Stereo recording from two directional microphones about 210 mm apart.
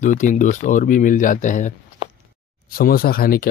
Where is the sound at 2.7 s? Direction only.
45° left (ahead or behind).